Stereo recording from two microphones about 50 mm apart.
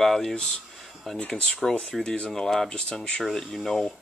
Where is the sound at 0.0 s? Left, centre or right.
Centre.